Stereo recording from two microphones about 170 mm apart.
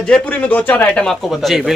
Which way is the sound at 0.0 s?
5° left (ahead or behind).